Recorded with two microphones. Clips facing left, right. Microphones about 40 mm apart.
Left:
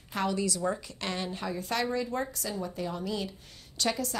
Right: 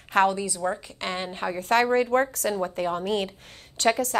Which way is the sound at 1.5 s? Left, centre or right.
Right.